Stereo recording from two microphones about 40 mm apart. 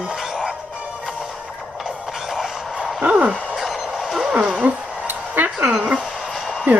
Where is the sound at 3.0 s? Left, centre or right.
Right.